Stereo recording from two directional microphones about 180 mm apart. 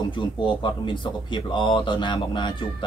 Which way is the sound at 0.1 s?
25° left (ahead or behind).